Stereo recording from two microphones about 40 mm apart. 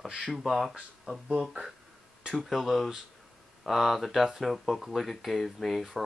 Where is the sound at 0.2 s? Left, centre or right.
Centre.